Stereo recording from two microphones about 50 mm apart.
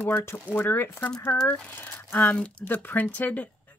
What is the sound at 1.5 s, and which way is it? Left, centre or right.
Speech, left.